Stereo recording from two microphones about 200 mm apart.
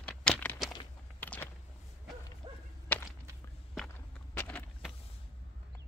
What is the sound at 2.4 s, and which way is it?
Whip, 25° right (ahead or behind).